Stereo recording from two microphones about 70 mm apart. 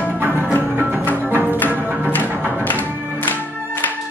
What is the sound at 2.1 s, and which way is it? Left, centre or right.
Music, left.